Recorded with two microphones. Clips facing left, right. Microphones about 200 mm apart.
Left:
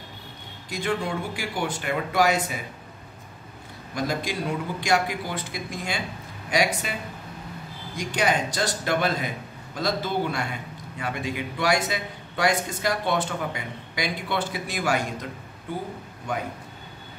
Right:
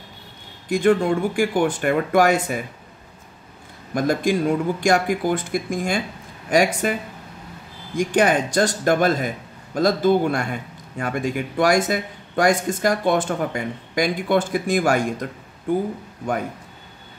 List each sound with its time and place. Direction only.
0.7 s a man's voice: 50° right (ahead or behind)
3.9 s a man's voice: 50° right (ahead or behind)
8.0 s a man's voice: 50° right (ahead or behind)